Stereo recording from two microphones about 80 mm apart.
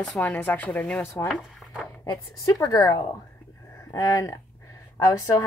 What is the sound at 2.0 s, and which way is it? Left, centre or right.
A woman's voice, left.